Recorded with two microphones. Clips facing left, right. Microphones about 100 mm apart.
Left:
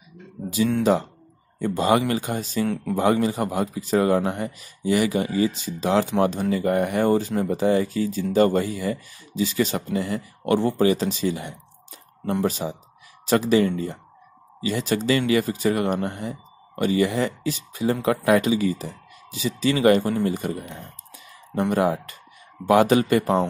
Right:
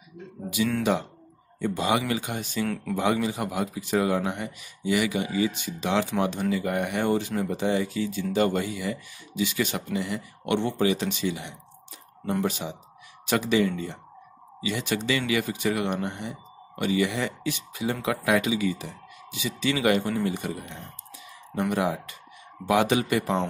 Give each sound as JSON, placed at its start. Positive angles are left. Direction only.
{"t": 1.6, "sound": "speech", "side_deg": 45}
{"t": 2.6, "sound": "speech", "side_deg": 20}
{"t": 2.9, "sound": "a man's voice", "side_deg": 40}